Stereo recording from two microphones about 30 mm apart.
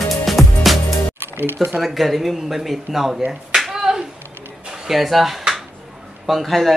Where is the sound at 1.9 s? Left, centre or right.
Centre.